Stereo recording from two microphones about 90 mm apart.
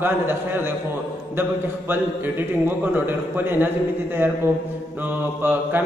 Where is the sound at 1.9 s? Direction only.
20° right (ahead or behind).